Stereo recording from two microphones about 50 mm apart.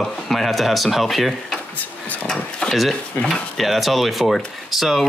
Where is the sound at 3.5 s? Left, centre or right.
Centre.